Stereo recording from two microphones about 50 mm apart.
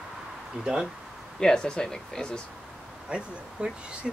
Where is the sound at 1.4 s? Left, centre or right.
Centre.